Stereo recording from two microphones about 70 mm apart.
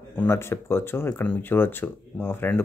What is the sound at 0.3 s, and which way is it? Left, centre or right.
Speech, left.